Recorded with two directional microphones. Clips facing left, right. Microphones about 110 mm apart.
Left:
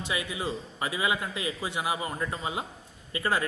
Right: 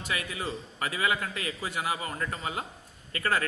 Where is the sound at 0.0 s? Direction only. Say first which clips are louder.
Left 2 dB; 20° left (ahead or behind).